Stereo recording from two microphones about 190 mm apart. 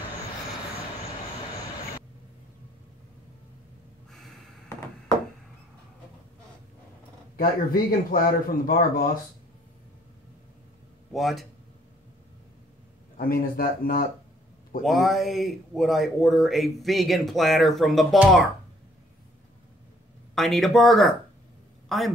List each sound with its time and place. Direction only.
4.6 s a sound: 15° left (ahead or behind)
7.3 s speech: 50° left (ahead or behind)
11.1 s speech: centre (ahead or behind)
13.2 s speech: 50° left (ahead or behind)
14.8 s speech: centre (ahead or behind)
20.3 s a man's voice: centre (ahead or behind)